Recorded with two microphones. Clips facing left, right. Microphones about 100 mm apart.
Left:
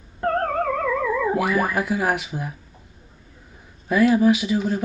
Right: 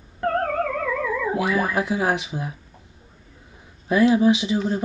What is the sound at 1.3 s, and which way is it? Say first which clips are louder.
Speech: left 1 dB; 20° right (ahead or behind).